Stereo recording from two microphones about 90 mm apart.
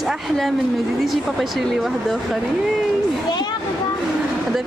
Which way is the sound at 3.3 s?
55° left (ahead or behind).